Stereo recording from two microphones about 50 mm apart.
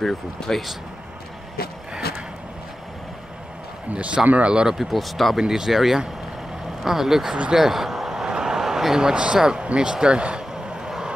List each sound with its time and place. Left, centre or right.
0.0 s speech: centre
3.9 s speech: right
4.7 s speech: centre
7.5 s a sound: centre
10.9 s vehicle: centre